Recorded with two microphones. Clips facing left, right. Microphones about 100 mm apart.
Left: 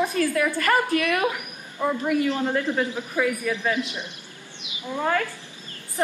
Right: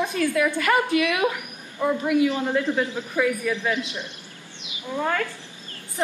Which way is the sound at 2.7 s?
15° left (ahead or behind).